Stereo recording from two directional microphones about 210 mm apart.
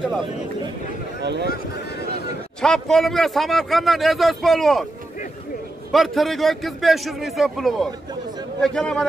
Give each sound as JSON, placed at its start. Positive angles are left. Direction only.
{"t": 1.2, "sound": "speech", "side_deg": -55}
{"t": 2.6, "sound": "a man's voice", "side_deg": 5}
{"t": 5.9, "sound": "a man's voice", "side_deg": 0}